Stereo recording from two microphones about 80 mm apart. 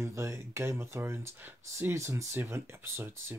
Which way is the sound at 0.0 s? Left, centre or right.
Right.